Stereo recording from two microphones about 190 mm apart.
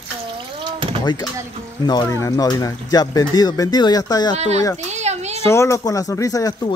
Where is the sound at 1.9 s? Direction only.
20° left (ahead or behind).